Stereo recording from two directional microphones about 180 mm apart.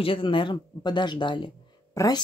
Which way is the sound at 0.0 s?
30° left (ahead or behind).